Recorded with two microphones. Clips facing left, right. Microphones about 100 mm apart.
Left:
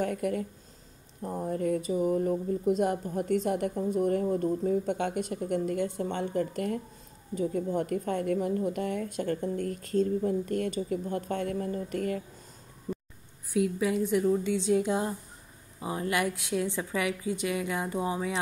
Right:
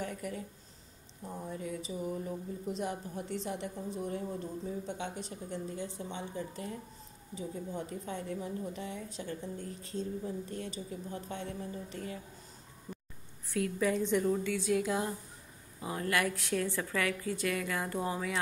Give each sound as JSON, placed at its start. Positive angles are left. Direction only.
{"t": 0.0, "sound": "speech", "side_deg": 60}
{"t": 13.5, "sound": "a woman's voice", "side_deg": 10}
{"t": 14.4, "sound": "a woman's voice", "side_deg": 25}